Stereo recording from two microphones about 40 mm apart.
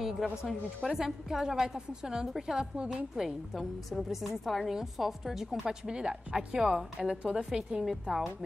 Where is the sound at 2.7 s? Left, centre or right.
Right.